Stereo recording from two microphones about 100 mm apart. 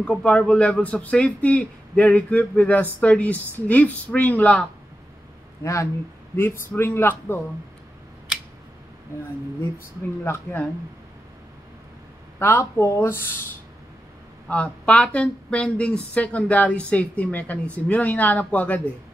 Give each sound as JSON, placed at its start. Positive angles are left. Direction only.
{"t": 0.0, "sound": "speech", "side_deg": 10}
{"t": 5.6, "sound": "speech", "side_deg": 30}
{"t": 10.2, "sound": "speech", "side_deg": 25}
{"t": 12.4, "sound": "speech", "side_deg": 25}
{"t": 14.5, "sound": "speech", "side_deg": 10}